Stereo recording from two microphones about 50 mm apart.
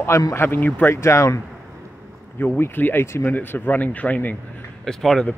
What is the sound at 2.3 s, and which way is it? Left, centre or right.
Speech, left.